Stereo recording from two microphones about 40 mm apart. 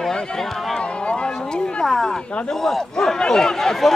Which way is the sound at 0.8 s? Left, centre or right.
Left.